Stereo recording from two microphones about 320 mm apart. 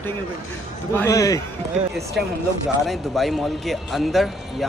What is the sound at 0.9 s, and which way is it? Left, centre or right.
Speech, centre.